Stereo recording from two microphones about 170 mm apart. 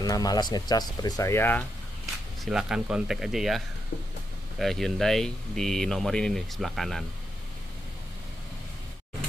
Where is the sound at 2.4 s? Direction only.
5° right (ahead or behind).